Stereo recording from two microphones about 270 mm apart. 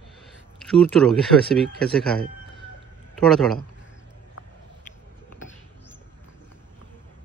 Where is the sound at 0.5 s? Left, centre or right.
Centre.